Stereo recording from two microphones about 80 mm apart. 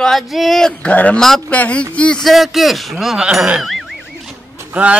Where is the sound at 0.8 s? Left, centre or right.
Centre.